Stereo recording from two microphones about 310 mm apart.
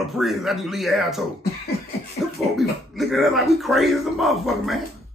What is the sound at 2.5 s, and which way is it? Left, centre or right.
Speech, centre.